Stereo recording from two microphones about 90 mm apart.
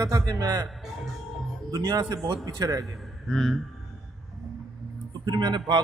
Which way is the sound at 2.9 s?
5° left (ahead or behind).